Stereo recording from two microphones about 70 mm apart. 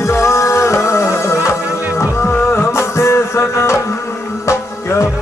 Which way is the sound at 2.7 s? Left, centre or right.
Left.